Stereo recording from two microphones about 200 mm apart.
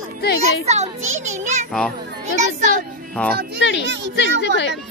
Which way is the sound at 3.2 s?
5° left (ahead or behind).